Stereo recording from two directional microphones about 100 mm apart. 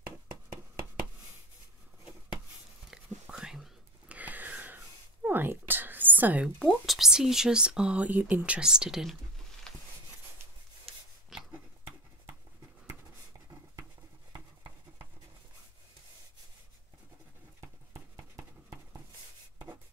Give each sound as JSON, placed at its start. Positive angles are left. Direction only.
{"t": 2.9, "sound": "whispering", "side_deg": -5}
{"t": 4.2, "sound": "a sound", "side_deg": -15}
{"t": 6.6, "sound": "speech", "side_deg": 0}
{"t": 11.3, "sound": "dog", "side_deg": -5}